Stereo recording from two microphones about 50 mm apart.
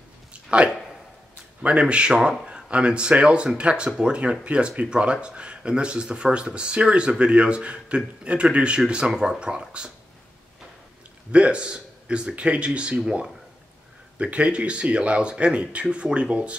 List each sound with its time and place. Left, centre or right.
0.3 s a sound: right
1.6 s speech: right
11.3 s speech: right